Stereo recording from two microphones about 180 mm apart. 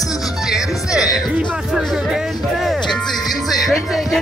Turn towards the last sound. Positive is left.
turn(degrees=0)  # may be behind; listen again after turning